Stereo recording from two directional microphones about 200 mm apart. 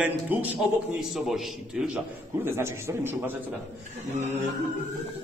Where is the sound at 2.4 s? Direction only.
10° right (ahead or behind).